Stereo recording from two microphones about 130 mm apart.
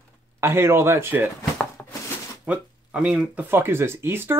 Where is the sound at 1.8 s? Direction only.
5° left (ahead or behind).